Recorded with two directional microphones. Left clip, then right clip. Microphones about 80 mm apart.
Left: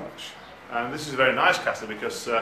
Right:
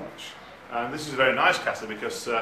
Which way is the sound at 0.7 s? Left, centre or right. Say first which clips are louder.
Left 1 dB; centre.